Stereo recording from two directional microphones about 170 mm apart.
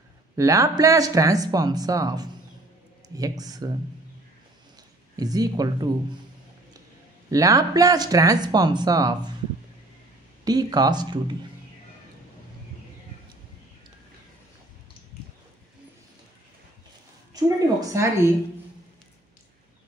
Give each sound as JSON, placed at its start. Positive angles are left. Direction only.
{"t": 0.4, "sound": "speech", "side_deg": -20}
{"t": 5.1, "sound": "speech", "side_deg": -20}
{"t": 7.2, "sound": "speech", "side_deg": -20}
{"t": 10.4, "sound": "speech", "side_deg": -25}
{"t": 17.3, "sound": "a woman's voice", "side_deg": -20}